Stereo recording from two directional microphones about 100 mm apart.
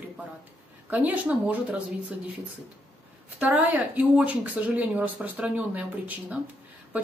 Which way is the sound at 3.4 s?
15° right (ahead or behind).